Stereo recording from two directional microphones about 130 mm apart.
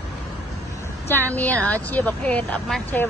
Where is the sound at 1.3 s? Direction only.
10° left (ahead or behind).